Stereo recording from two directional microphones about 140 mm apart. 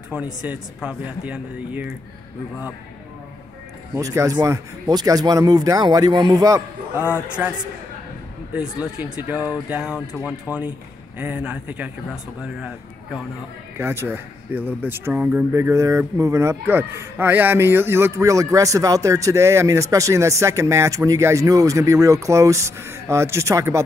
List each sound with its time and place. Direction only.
0.1 s speech: 10° right (ahead or behind)
3.9 s speech: 20° right (ahead or behind)
8.5 s a man's voice: 5° right (ahead or behind)
13.7 s speech: 15° right (ahead or behind)